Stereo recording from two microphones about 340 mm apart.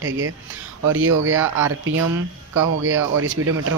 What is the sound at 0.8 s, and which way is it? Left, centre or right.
Speech, right.